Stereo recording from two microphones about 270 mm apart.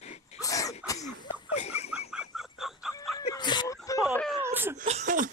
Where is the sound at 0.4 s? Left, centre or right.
Centre.